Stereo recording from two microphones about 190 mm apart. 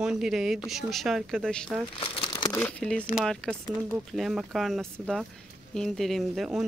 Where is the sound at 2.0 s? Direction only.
25° left (ahead or behind).